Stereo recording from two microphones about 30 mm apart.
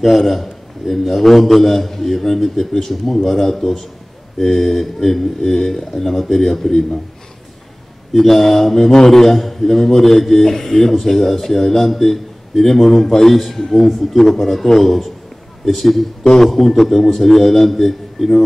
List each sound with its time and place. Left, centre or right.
0.0 s a man's voice: centre
8.1 s a man's voice: centre